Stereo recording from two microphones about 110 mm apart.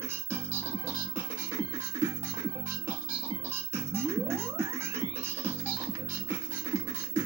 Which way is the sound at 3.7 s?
20° right (ahead or behind).